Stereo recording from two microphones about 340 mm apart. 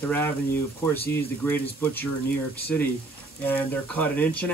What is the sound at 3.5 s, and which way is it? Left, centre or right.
Speech, centre.